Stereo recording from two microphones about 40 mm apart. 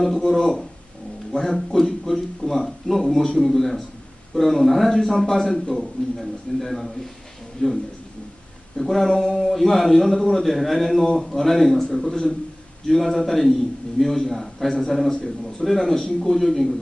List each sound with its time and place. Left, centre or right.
0.0 s a man's voice: centre
7.6 s speech: centre
8.7 s speech: centre
9.4 s a man's voice: centre